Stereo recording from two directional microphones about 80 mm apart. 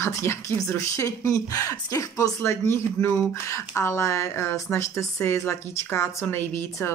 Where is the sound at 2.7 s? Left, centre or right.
Left.